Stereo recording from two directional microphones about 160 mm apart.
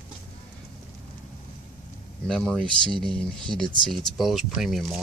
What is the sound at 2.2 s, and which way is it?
Speech, 5° left (ahead or behind).